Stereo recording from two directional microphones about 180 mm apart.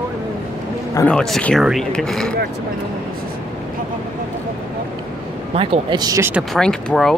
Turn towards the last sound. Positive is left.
turn(degrees=0)  # may be behind; listen again after turning